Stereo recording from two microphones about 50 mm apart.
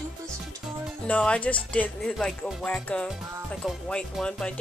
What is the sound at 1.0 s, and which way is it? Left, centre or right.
Speech, left.